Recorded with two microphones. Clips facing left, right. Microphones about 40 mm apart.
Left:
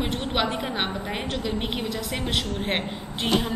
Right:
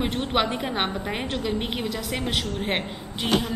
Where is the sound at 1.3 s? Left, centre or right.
Centre.